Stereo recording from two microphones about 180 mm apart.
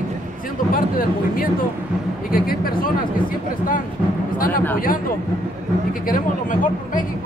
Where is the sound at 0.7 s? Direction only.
50° left (ahead or behind).